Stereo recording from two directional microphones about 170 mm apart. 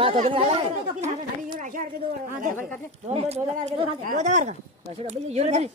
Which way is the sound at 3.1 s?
40° right (ahead or behind).